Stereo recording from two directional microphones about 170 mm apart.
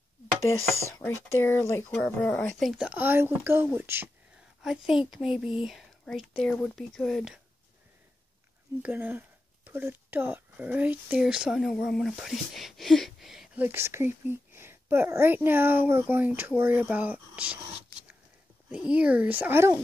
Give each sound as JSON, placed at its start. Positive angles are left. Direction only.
{"t": 0.8, "sound": "speech", "side_deg": 15}
{"t": 4.6, "sound": "speech", "side_deg": 0}
{"t": 8.8, "sound": "speech", "side_deg": -10}
{"t": 18.7, "sound": "speech", "side_deg": -5}